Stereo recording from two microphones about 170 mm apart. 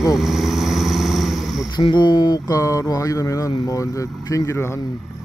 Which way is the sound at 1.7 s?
25° left (ahead or behind).